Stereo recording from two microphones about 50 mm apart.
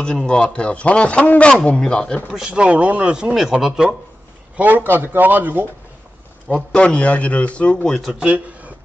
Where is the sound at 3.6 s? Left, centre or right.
Centre.